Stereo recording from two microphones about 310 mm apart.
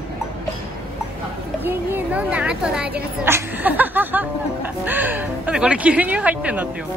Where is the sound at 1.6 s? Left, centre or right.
Centre.